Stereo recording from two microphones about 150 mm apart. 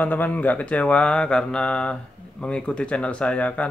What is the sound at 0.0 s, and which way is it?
Speech, 10° left (ahead or behind).